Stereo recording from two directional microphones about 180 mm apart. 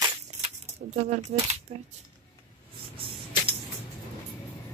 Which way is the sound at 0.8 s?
40° right (ahead or behind).